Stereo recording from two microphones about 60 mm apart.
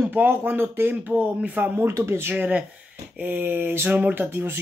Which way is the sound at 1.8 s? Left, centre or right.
Right.